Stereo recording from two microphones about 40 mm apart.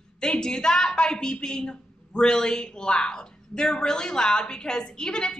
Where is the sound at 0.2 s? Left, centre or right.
Centre.